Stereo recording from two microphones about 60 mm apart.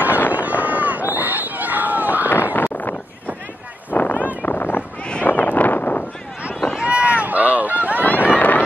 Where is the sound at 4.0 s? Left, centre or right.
Left.